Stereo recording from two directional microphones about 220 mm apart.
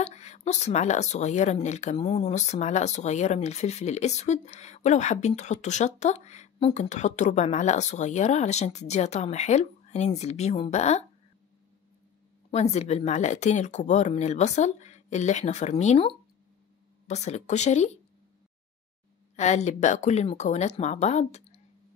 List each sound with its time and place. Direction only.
0.0 s speech: 30° left (ahead or behind)
12.7 s speech: 30° left (ahead or behind)
19.3 s speech: 30° left (ahead or behind)